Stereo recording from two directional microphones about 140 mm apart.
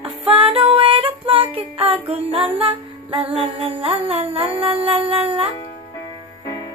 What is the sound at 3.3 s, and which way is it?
Humming, 40° right (ahead or behind).